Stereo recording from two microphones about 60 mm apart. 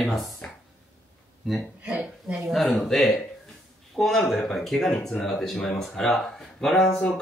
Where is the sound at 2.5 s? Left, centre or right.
Centre.